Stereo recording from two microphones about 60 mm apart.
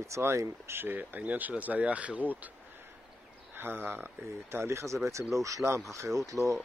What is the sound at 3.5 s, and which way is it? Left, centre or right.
Speech, right.